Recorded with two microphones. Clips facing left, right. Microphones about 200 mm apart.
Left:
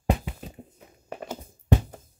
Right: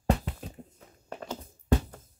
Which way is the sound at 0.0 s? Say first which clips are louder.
Left 1 dB; 10° left (ahead or behind).